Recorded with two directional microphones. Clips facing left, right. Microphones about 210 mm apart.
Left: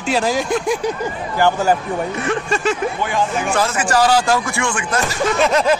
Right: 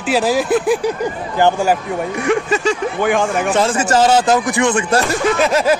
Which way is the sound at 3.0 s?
55° right (ahead or behind).